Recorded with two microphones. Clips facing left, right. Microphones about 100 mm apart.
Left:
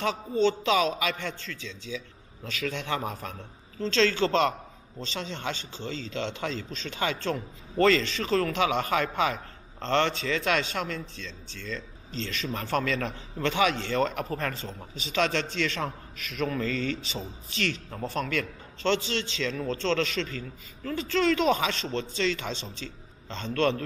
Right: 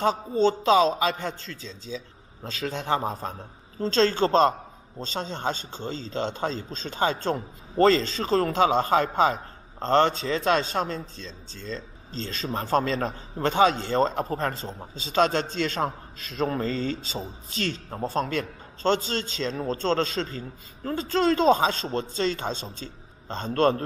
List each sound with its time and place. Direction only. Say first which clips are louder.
0.3 s a man's voice: right 3 dB; 35° right (ahead or behind)